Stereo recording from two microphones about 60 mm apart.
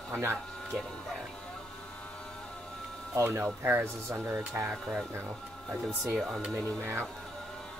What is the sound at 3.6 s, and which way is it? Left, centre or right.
Speech, right.